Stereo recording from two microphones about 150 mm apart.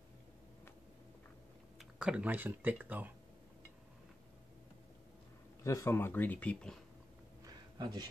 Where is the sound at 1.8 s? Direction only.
5° right (ahead or behind).